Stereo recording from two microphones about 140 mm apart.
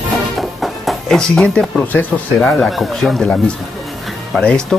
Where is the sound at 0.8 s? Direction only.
5° left (ahead or behind).